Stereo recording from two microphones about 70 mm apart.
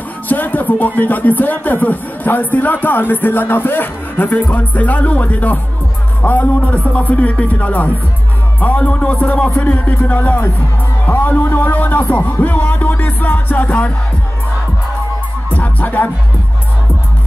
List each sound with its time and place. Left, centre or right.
0.3 s speech: left
15.5 s music: left